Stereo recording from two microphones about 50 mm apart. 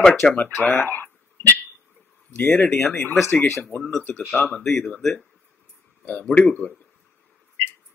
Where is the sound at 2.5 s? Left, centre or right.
Left.